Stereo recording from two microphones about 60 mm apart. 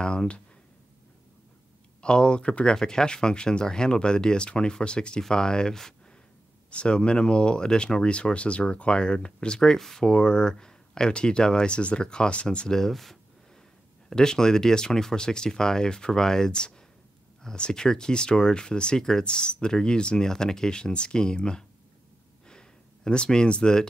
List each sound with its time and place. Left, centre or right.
0.0 s speech: centre
2.0 s speech: centre
22.5 s a sound: centre